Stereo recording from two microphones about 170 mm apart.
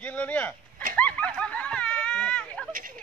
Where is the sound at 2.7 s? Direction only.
55° right (ahead or behind).